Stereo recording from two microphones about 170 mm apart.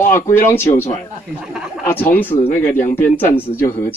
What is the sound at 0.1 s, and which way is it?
Speech, 15° left (ahead or behind).